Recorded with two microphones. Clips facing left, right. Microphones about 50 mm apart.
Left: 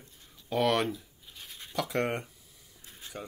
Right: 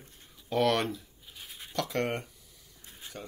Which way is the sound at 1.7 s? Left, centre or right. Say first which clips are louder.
Left 1 dB; centre.